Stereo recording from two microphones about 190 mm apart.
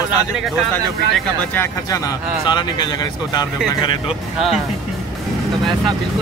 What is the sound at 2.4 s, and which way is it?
Speech, 25° left (ahead or behind).